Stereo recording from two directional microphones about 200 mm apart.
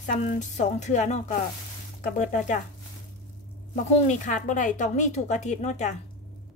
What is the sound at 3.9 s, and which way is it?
A woman's voice, 35° left (ahead or behind).